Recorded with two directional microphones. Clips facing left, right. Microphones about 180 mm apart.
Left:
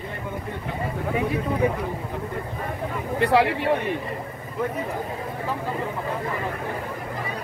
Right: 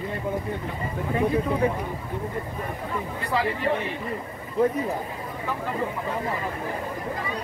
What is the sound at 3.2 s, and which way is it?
Speech, 70° left (ahead or behind).